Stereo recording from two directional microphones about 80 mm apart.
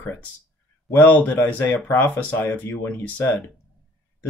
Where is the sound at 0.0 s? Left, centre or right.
Left.